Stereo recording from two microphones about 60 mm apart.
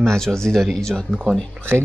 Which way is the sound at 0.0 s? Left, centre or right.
Centre.